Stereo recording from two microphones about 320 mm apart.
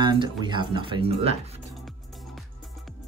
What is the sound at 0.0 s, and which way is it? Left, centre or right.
Speech, centre.